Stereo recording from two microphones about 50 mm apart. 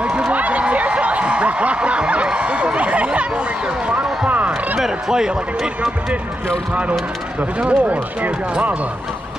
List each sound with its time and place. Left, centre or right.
0.0 s a sound: right
4.7 s speech: centre
6.7 s speech: right